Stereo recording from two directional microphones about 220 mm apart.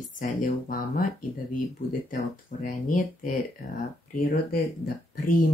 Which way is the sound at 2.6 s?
35° left (ahead or behind).